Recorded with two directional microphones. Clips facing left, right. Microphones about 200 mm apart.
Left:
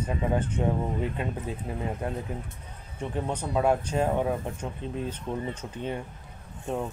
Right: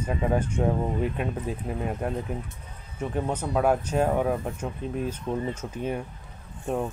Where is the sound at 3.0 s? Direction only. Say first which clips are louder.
Right 3 dB; 5° right (ahead or behind).